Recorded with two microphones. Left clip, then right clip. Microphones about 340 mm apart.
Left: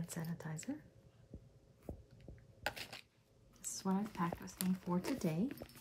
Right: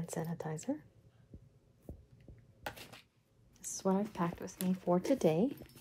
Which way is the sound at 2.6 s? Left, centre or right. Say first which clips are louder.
Left 2 dB; left.